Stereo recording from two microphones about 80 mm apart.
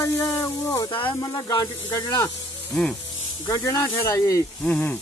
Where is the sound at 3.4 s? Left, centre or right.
Left.